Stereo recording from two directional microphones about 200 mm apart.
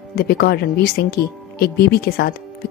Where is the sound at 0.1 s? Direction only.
50° left (ahead or behind).